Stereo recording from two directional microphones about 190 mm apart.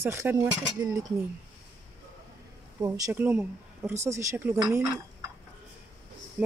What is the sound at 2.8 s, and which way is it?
Speech, 10° right (ahead or behind).